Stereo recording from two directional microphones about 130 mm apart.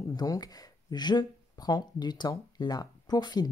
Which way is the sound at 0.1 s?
30° left (ahead or behind).